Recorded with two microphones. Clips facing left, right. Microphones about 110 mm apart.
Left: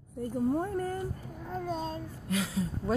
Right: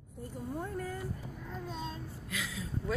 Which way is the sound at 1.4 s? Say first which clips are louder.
Left 8 dB; 45° left (ahead or behind).